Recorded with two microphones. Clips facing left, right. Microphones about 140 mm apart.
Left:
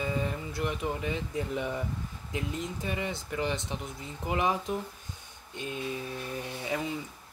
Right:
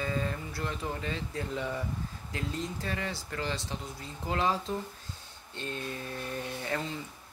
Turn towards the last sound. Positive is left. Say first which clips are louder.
# left 1 dB
turn(degrees=10)  # may be behind; listen again after turning